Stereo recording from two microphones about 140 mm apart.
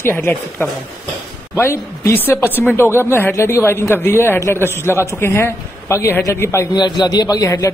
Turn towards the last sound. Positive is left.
turn(degrees=25)  # may be behind; listen again after turning